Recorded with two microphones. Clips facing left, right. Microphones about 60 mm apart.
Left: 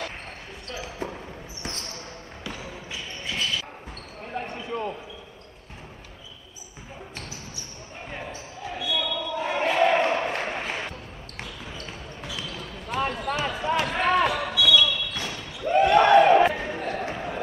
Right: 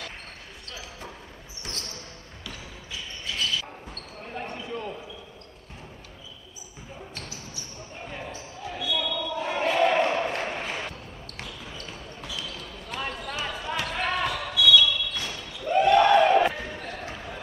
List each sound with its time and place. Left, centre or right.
0.7 s basketball bounce: left
2.4 s basketball bounce: left
8.6 s basketball bounce: centre; by 17.4 s left